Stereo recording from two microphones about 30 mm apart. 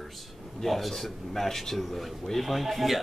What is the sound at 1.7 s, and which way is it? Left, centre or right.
Speech, centre.